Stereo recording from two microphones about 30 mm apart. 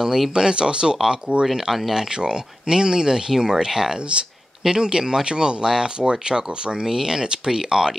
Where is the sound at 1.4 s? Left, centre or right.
Centre.